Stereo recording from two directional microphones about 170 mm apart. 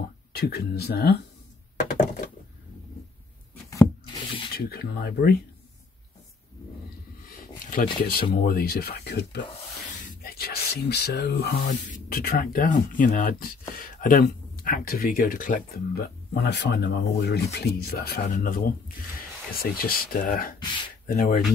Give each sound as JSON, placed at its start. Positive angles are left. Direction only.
{"t": 0.3, "sound": "speech", "side_deg": 65}
{"t": 3.7, "sound": "rub", "side_deg": 25}
{"t": 4.6, "sound": "speech", "side_deg": 65}
{"t": 7.2, "sound": "a sound", "side_deg": 55}
{"t": 8.1, "sound": "speech", "side_deg": 60}
{"t": 9.8, "sound": "a sound", "side_deg": 65}
{"t": 11.6, "sound": "speech", "side_deg": 60}